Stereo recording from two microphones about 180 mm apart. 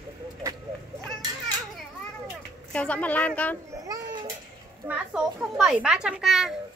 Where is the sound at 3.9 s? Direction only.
20° right (ahead or behind).